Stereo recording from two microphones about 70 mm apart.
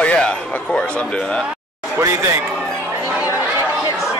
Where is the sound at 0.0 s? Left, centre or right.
Centre.